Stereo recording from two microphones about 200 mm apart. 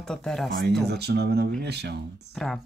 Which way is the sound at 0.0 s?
5° left (ahead or behind).